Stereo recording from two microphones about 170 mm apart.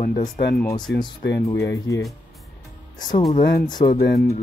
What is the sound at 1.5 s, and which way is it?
Speech, 15° left (ahead or behind).